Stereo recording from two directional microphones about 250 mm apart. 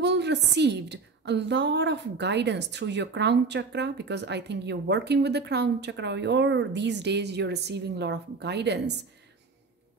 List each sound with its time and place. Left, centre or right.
0.0 s a woman's voice: right